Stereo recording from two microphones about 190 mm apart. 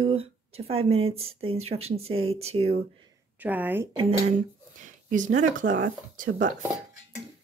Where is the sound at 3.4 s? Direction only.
10° right (ahead or behind).